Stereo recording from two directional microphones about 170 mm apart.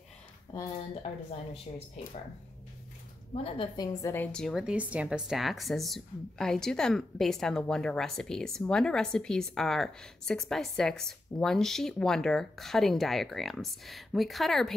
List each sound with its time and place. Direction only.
1.7 s speech: 40° left (ahead or behind)
3.4 s a woman's voice: 30° left (ahead or behind)
4.1 s speech: 10° left (ahead or behind)